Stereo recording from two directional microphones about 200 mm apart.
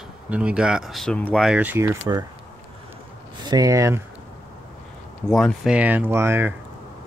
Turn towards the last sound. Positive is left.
turn(degrees=-10)  # may be behind; listen again after turning